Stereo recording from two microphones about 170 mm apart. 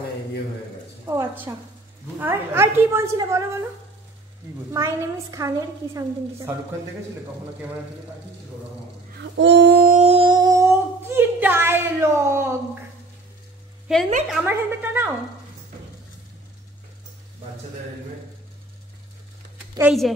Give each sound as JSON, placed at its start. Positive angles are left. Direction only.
{"t": 1.0, "sound": "a woman's voice", "side_deg": -15}
{"t": 4.7, "sound": "a woman's voice", "side_deg": -15}
{"t": 9.2, "sound": "a sound", "side_deg": -90}
{"t": 9.9, "sound": "humming", "side_deg": -35}
{"t": 13.9, "sound": "a woman's voice", "side_deg": -5}
{"t": 19.8, "sound": "speech", "side_deg": 0}